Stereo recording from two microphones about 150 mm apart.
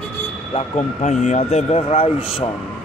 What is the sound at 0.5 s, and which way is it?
Speech, 50° left (ahead or behind).